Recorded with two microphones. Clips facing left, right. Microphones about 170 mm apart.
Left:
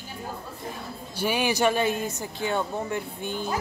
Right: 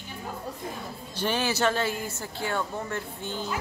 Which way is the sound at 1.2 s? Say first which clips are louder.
Left 2 dB; 10° left (ahead or behind).